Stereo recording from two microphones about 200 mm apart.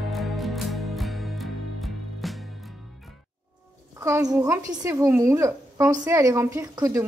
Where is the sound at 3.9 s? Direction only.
15° right (ahead or behind).